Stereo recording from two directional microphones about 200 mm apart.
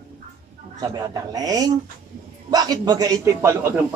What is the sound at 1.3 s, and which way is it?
Speech, 20° right (ahead or behind).